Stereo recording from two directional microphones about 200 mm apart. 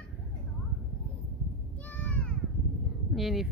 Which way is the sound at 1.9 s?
10° left (ahead or behind).